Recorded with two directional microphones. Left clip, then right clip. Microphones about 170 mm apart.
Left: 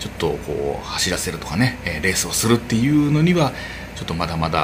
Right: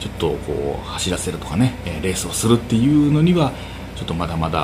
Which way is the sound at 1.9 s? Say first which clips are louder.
Left 3 dB; 40° left (ahead or behind).